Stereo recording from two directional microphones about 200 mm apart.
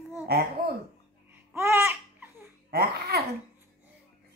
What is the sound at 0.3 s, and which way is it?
Speech, 50° right (ahead or behind).